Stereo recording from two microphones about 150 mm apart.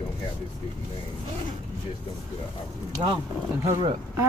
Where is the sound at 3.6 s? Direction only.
20° right (ahead or behind).